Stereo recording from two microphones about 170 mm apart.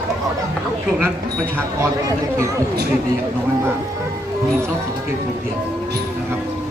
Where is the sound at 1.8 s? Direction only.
15° right (ahead or behind).